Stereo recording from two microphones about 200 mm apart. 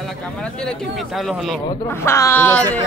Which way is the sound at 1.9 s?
10° left (ahead or behind).